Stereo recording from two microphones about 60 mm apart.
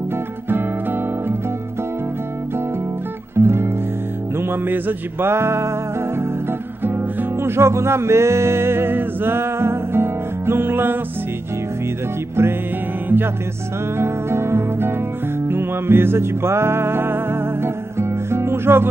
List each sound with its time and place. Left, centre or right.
0.5 s guitar: right
3.3 s music: right
6.8 s music: right
12.4 s music: right
13.9 s music: right